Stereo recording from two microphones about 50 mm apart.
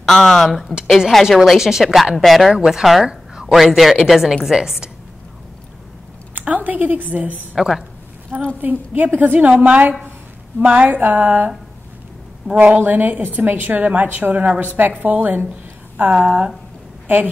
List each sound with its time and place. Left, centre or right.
0.0 s a woman's voice: centre
2.5 s speech: centre
3.1 s a sound: centre
3.5 s a woman's voice: centre
6.4 s a woman's voice: right
7.5 s a woman's voice: centre
8.5 s a woman's voice: right
12.7 s a woman's voice: right